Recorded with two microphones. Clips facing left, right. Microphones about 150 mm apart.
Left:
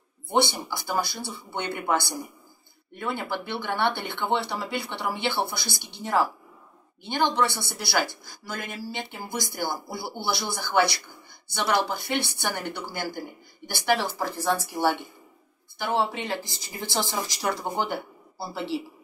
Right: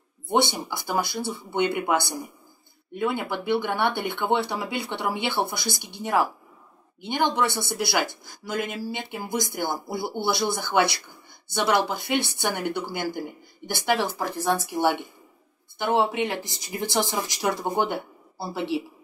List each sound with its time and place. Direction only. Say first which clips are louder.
0.3 s speech: right 1 dB; 20° right (ahead or behind)